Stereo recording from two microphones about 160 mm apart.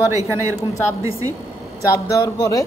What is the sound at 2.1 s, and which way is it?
Speech, 20° left (ahead or behind).